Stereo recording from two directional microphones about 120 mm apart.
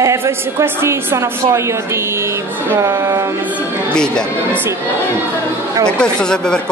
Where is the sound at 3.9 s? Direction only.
5° left (ahead or behind).